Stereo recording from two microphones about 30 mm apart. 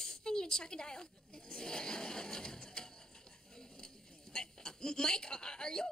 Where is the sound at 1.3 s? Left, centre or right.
Left.